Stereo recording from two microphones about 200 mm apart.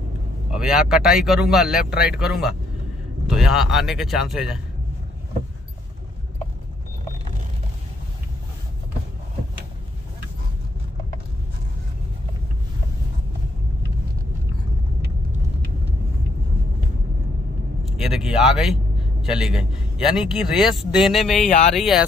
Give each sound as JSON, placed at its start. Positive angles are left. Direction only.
{"t": 0.5, "sound": "speech", "side_deg": -5}
{"t": 17.8, "sound": "vehicle", "side_deg": 0}
{"t": 19.2, "sound": "speech", "side_deg": -5}
{"t": 21.5, "sound": "speech", "side_deg": 30}
{"t": 21.7, "sound": "speech", "side_deg": -5}